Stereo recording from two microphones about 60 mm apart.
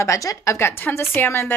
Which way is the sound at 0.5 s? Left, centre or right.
Left.